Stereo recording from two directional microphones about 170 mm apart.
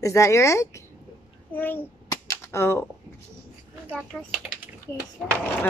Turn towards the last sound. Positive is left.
turn(degrees=10)  # may be behind; listen again after turning